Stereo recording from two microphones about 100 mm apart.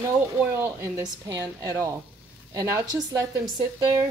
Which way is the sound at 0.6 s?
25° right (ahead or behind).